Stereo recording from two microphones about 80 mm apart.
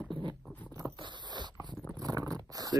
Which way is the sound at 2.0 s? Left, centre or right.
Right.